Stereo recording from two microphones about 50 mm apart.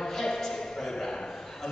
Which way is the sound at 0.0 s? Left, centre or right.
Centre.